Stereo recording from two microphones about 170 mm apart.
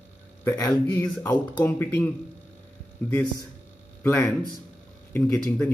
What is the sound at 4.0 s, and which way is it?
Speech, 10° left (ahead or behind).